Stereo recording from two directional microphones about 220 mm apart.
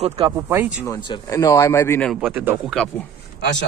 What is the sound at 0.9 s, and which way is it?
Speech, 15° left (ahead or behind).